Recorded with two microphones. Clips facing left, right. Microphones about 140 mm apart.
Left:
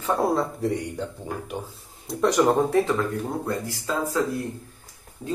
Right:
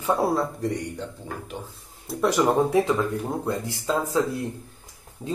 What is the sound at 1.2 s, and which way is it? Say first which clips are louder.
Speech: left 3 dB; 15° left (ahead or behind).